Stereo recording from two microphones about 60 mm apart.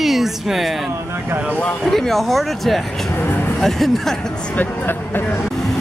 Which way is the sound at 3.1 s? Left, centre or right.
Left.